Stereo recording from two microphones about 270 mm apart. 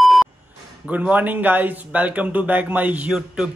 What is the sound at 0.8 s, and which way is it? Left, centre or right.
Speech, centre.